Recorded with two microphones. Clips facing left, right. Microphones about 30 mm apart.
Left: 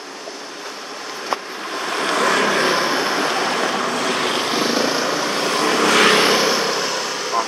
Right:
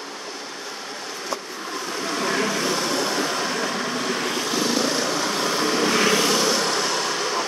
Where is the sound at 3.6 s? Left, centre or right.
Left.